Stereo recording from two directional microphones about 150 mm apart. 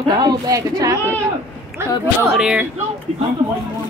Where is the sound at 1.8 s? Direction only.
15° right (ahead or behind).